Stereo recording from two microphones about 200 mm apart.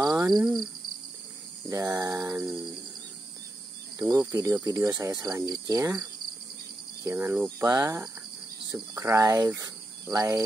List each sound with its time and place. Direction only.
0.0 s a sound: 20° right (ahead or behind)
0.4 s speech: centre (ahead or behind)
1.7 s speech: 15° right (ahead or behind)
4.3 s speech: 15° right (ahead or behind)
7.1 s speech: 10° right (ahead or behind)
8.7 s cricket: 15° right (ahead or behind)